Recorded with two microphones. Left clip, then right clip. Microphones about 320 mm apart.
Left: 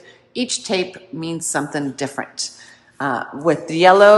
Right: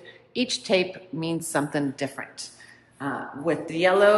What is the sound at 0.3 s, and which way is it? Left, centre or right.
A woman's voice, centre.